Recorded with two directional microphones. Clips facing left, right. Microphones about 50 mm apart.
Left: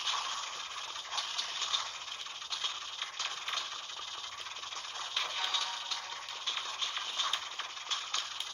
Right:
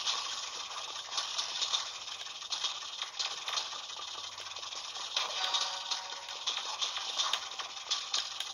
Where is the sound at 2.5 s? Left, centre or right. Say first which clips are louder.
Even; left.